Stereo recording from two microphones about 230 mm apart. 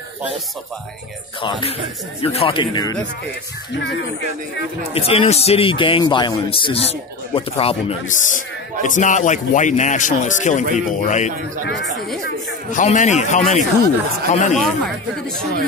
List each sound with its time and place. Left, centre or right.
1.4 s a man's voice: left
4.9 s a man's voice: left
12.7 s a man's voice: left